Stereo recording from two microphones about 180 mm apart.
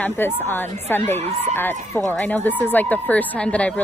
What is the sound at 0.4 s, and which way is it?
A woman's voice, 10° left (ahead or behind).